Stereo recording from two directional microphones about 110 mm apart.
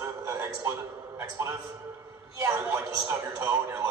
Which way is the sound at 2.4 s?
30° right (ahead or behind).